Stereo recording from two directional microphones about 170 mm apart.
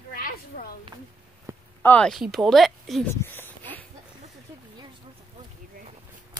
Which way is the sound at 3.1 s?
15° left (ahead or behind).